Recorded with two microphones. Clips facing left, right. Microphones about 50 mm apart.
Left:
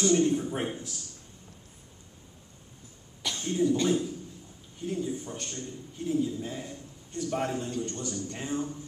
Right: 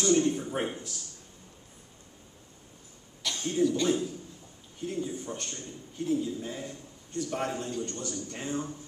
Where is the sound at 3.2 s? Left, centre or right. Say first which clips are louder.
Even; centre.